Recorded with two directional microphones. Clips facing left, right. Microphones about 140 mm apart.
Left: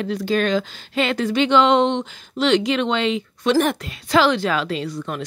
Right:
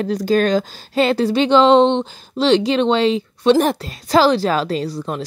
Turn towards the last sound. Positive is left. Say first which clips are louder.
# right 3 dB
turn(degrees=-35)  # may be behind; listen again after turning